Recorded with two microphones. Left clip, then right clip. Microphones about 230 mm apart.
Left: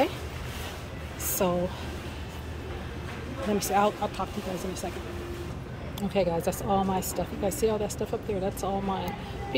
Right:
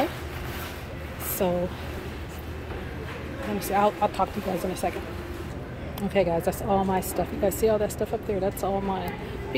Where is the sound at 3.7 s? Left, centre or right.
Centre.